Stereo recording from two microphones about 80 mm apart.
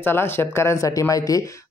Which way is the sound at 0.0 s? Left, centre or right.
Left.